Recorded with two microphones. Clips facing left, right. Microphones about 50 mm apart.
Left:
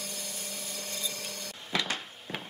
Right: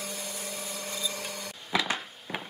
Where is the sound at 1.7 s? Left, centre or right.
Centre.